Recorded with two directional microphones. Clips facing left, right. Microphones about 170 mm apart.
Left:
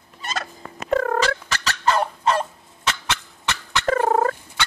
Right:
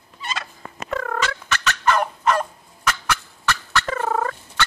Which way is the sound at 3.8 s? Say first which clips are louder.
Left 7 dB; 45° left (ahead or behind).